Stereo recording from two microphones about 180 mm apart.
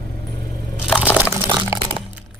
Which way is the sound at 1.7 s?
15° right (ahead or behind).